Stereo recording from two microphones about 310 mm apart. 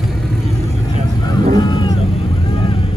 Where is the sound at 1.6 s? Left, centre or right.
Centre.